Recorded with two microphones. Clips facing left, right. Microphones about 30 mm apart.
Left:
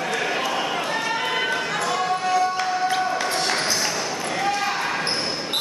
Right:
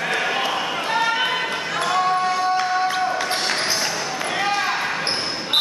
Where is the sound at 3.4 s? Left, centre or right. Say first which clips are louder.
Even; centre.